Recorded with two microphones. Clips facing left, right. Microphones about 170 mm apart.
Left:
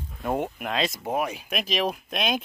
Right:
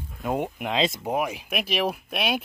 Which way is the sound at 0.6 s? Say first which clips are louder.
Right 2 dB; 20° right (ahead or behind).